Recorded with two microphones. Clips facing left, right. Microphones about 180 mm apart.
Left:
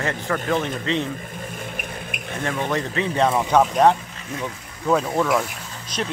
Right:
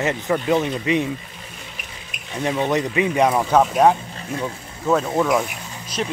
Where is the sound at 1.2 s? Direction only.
50° left (ahead or behind).